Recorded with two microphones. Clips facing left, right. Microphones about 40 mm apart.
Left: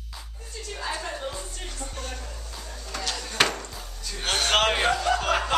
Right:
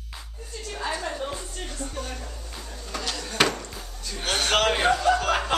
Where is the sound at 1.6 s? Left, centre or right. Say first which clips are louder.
Right 3 dB; centre.